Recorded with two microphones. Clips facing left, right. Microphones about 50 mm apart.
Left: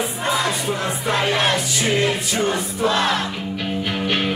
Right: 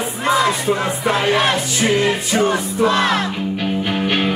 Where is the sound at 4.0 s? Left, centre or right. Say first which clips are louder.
Right 2 dB; right.